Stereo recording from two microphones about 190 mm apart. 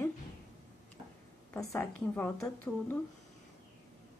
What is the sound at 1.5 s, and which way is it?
A woman's voice, 10° left (ahead or behind).